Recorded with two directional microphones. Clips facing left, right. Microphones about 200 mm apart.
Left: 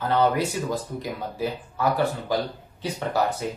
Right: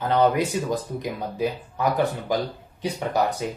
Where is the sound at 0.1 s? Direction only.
20° right (ahead or behind).